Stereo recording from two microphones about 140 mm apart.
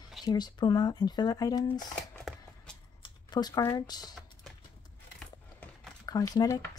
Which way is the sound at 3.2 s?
30° left (ahead or behind).